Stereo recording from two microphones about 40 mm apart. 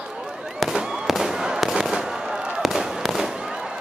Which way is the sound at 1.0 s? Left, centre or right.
Centre.